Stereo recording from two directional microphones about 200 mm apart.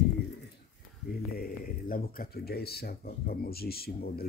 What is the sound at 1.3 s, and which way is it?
Speech, 45° left (ahead or behind).